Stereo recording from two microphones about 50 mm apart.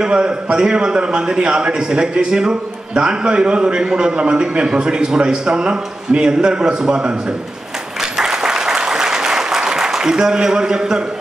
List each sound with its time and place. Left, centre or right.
0.0 s a man's voice: centre
8.0 s applause: centre